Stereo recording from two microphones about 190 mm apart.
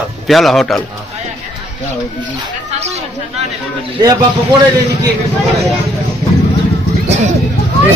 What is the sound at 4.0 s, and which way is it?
Speech, 20° right (ahead or behind).